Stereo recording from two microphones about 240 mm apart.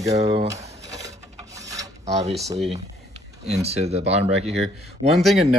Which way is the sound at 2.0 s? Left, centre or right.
Right.